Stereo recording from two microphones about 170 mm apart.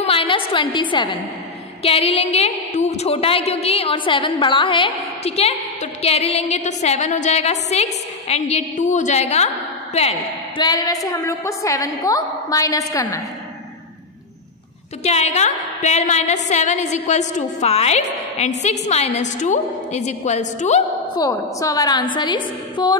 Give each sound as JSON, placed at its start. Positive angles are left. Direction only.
{"t": 0.0, "sound": "a sound", "side_deg": 30}
{"t": 1.8, "sound": "a woman's voice", "side_deg": 35}
{"t": 10.6, "sound": "a woman's voice", "side_deg": 20}
{"t": 15.0, "sound": "a woman's voice", "side_deg": 40}
{"t": 21.2, "sound": "a woman's voice", "side_deg": 20}